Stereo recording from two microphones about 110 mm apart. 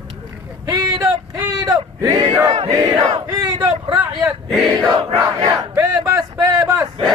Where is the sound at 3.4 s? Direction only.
40° right (ahead or behind).